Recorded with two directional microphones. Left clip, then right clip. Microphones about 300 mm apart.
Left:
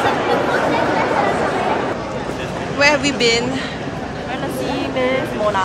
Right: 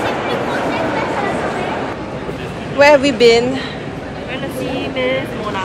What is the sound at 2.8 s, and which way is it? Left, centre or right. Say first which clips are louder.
Speech: right 6 dB; centre.